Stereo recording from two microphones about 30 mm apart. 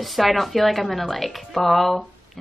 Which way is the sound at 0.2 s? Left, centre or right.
Centre.